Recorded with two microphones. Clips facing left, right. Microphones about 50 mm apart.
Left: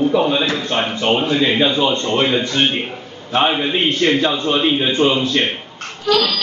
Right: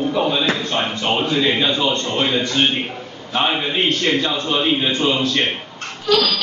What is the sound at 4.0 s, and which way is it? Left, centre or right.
A man's voice, left.